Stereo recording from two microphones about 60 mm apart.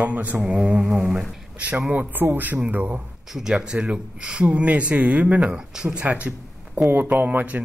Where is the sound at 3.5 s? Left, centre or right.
Centre.